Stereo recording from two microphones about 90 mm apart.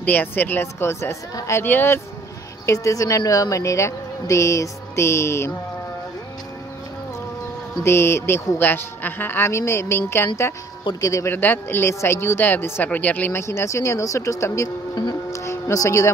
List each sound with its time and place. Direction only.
0.0 s speech: 20° left (ahead or behind)
2.6 s a woman's voice: 35° left (ahead or behind)
7.8 s speech: 30° left (ahead or behind)
11.0 s a woman's voice: 40° left (ahead or behind)
11.2 s speech: 20° left (ahead or behind)
15.3 s music: 35° left (ahead or behind)